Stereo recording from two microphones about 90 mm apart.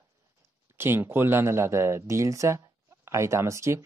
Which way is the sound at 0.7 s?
25° right (ahead or behind).